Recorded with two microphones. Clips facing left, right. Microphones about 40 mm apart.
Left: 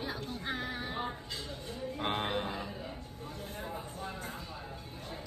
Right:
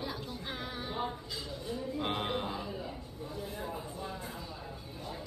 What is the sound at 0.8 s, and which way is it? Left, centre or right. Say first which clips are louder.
Music: right 1 dB; left.